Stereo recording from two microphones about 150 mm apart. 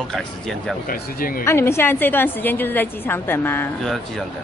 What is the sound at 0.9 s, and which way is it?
Speech, 75° left (ahead or behind).